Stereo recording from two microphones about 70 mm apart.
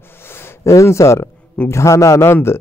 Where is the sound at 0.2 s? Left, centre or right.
Left.